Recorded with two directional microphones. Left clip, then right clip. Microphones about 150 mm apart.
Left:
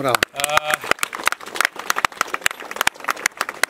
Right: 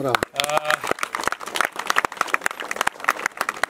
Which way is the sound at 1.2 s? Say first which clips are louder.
Left 4 dB; 40° right (ahead or behind).